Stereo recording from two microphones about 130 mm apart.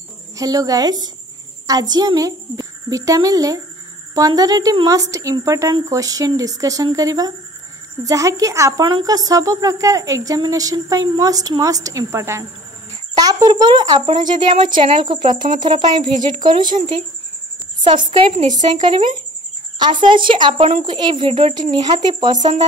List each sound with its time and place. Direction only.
0.4 s a woman's voice: 30° right (ahead or behind)
20.1 s speech: 40° right (ahead or behind)
21.5 s speech: 35° right (ahead or behind)